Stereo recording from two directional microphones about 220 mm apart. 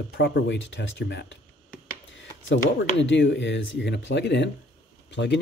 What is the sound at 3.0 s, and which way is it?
Speech, 55° left (ahead or behind).